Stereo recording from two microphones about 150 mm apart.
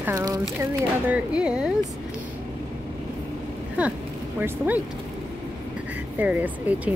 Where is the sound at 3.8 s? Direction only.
10° right (ahead or behind).